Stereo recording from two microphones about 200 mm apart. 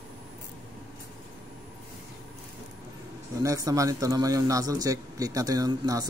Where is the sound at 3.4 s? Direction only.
15° right (ahead or behind).